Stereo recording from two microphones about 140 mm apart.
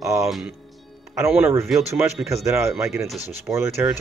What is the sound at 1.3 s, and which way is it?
Speech, 15° right (ahead or behind).